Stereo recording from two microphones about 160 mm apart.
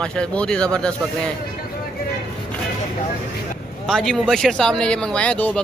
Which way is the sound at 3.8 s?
5° left (ahead or behind).